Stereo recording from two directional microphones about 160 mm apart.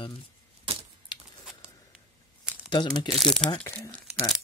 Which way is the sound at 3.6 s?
15° left (ahead or behind).